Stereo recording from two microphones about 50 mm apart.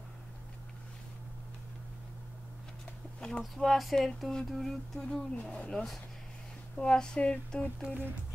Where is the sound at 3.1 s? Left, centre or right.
Centre.